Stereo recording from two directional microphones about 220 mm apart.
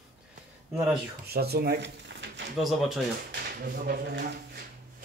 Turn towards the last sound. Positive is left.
turn(degrees=-45)  # may be behind; listen again after turning